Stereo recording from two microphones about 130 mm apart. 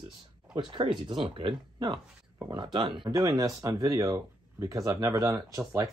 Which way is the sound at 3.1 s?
25° right (ahead or behind).